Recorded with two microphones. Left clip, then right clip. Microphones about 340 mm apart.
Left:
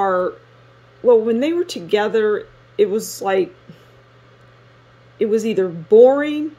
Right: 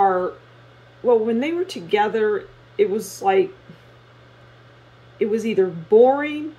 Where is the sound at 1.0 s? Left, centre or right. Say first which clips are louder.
Left 4 dB; left.